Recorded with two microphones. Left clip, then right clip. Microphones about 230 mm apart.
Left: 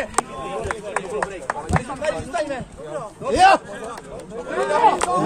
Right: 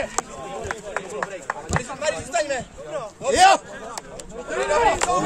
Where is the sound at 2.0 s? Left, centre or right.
Right.